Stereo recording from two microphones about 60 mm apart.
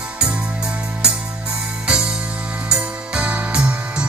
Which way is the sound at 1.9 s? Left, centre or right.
Centre.